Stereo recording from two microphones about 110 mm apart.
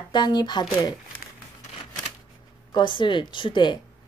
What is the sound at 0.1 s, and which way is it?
Speech, 40° left (ahead or behind).